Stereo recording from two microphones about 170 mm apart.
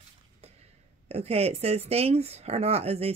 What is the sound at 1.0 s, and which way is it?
Speech, 35° right (ahead or behind).